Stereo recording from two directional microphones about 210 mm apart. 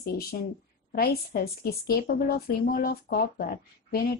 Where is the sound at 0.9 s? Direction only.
45° left (ahead or behind).